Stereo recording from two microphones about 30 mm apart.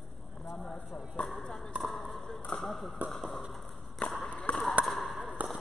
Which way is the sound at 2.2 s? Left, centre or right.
Left.